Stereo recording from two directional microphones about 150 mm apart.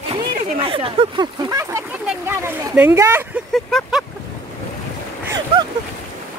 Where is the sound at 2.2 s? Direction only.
15° right (ahead or behind).